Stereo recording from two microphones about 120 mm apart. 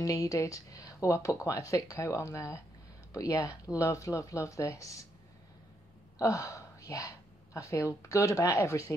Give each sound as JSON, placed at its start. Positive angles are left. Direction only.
{"t": 0.0, "sound": "speech", "side_deg": 30}
{"t": 6.1, "sound": "a woman's voice", "side_deg": 25}